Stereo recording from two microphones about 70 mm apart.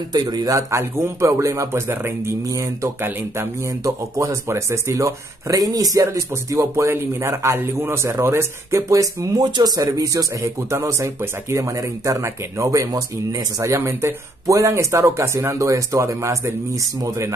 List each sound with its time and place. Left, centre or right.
0.1 s speech: right
1.9 s a man's voice: right
9.4 s speech: right